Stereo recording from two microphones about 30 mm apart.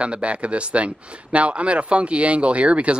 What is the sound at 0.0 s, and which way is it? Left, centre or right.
Speech, right.